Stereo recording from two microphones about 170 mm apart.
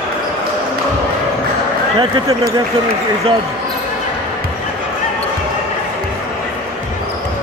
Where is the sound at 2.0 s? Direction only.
25° right (ahead or behind).